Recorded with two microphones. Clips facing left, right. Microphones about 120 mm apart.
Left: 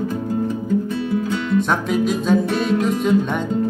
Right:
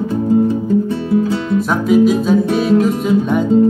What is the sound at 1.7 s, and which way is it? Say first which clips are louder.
Music: right 7 dB; 5° right (ahead or behind).